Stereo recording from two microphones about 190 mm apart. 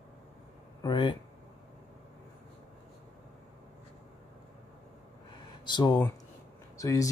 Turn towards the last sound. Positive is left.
turn(degrees=15)  # may be behind; listen again after turning